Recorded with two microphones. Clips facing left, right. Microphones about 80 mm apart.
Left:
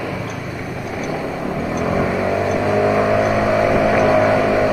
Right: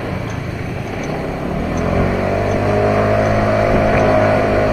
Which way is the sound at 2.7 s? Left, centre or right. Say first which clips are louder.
Right 1 dB; centre.